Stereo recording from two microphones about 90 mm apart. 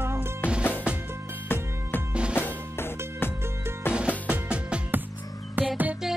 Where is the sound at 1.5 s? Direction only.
20° left (ahead or behind).